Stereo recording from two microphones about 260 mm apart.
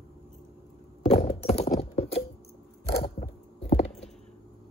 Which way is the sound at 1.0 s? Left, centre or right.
Left.